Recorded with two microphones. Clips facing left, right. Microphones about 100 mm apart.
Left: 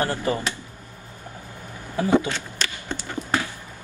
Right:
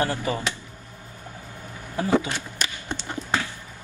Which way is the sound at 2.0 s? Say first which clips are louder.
Left 2 dB; 15° right (ahead or behind).